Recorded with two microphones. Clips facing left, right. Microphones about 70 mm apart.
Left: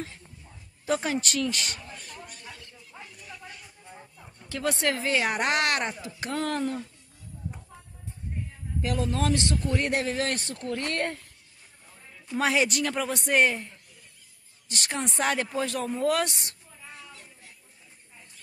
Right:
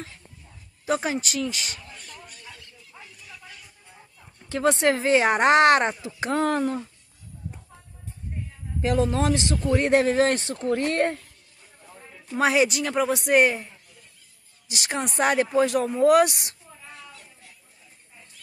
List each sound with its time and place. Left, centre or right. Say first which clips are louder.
0.8 s speech: right 2 dB; centre
2.2 s a sound: even; left
4.5 s speech: right 6 dB; right
8.8 s speech: right 5 dB; right
12.4 s speech: right 4 dB; centre